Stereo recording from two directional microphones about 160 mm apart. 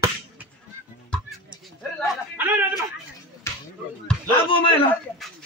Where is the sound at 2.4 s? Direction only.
10° right (ahead or behind).